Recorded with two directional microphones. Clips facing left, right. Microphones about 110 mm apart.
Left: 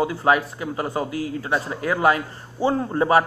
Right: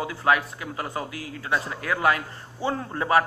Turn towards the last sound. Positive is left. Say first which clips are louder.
# left 5 dB
turn(degrees=20)  # may be behind; listen again after turning